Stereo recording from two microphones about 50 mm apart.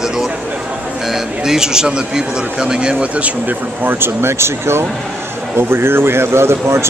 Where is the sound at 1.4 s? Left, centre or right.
Centre.